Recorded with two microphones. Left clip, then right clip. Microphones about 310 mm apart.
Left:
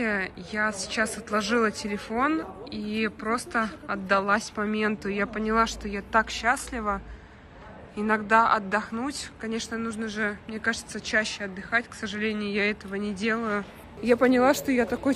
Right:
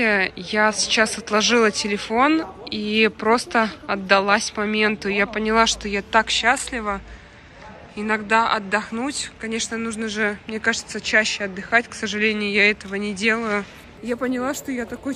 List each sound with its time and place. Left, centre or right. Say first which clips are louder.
0.0 s a woman's voice: right 9 dB; centre